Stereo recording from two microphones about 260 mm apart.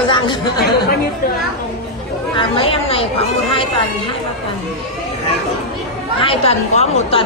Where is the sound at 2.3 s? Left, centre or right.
Centre.